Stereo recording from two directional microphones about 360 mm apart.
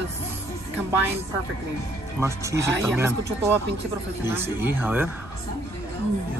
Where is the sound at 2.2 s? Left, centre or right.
Centre.